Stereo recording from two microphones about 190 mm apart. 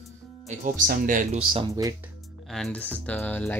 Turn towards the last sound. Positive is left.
turn(degrees=10)  # may be behind; listen again after turning